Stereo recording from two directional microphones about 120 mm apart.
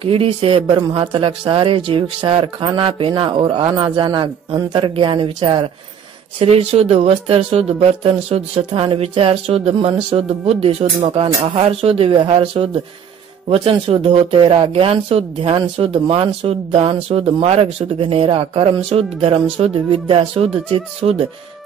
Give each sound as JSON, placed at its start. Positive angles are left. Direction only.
{"t": 0.0, "sound": "speech", "side_deg": -50}
{"t": 6.4, "sound": "speech", "side_deg": -50}